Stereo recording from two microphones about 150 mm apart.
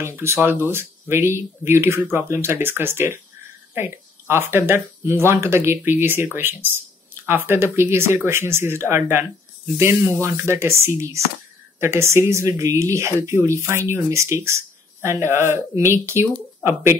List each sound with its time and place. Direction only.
0.0 s speech: 15° right (ahead or behind)